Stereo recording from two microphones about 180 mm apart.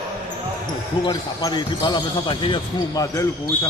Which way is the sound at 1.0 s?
25° left (ahead or behind).